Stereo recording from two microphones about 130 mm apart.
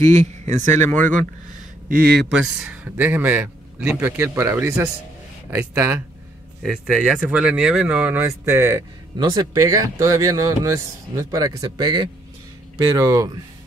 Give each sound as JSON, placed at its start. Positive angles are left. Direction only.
{"t": 0.0, "sound": "speech", "side_deg": -60}
{"t": 2.3, "sound": "a man's voice", "side_deg": -5}
{"t": 6.6, "sound": "speech", "side_deg": 5}
{"t": 7.2, "sound": "a man's voice", "side_deg": -10}
{"t": 9.2, "sound": "speech", "side_deg": -30}